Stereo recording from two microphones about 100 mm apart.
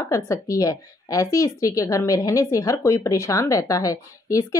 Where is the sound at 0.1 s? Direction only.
35° left (ahead or behind).